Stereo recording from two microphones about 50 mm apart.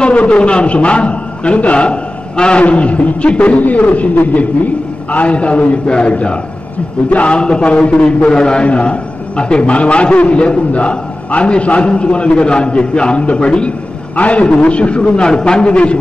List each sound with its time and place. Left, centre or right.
0.0 s a man's voice: left